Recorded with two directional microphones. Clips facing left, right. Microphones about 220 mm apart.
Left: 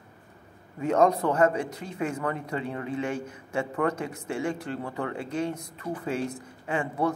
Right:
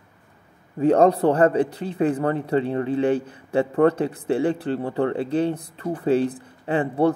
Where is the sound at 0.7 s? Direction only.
35° right (ahead or behind).